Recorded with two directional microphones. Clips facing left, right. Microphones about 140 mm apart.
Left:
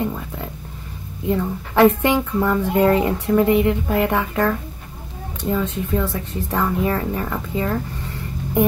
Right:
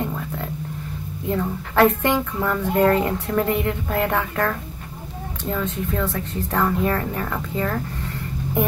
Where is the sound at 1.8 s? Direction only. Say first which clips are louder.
Left 3 dB; 10° left (ahead or behind).